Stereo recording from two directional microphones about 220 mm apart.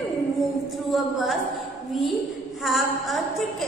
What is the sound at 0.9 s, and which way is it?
Speech, centre (ahead or behind).